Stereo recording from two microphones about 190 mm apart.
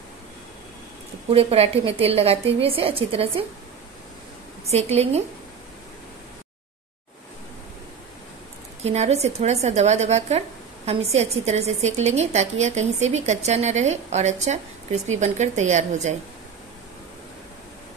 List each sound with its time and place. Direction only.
1.3 s a woman's voice: 30° right (ahead or behind)
4.6 s a woman's voice: 35° right (ahead or behind)
8.8 s a woman's voice: 35° right (ahead or behind)